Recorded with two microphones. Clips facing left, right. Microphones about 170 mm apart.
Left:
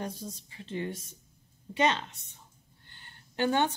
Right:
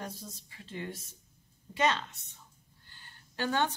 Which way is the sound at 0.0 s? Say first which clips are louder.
Left 5 dB; 25° left (ahead or behind).